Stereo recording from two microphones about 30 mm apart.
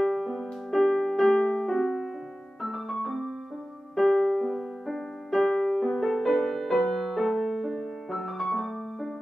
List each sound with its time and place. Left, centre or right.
0.0 s music: centre
2.6 s piano: centre
3.9 s music: centre